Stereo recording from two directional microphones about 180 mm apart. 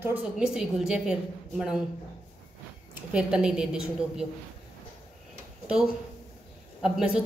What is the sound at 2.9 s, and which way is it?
Speech, 5° right (ahead or behind).